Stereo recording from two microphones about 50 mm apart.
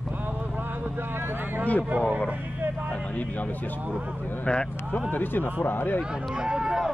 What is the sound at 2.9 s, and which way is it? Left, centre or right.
Speech, left.